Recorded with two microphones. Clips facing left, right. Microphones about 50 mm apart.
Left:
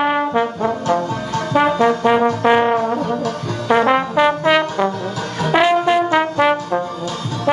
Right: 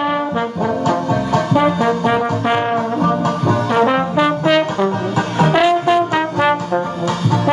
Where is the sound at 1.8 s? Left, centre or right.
Centre.